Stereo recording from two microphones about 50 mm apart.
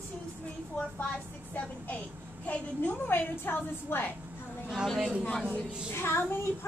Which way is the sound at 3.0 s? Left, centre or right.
Left.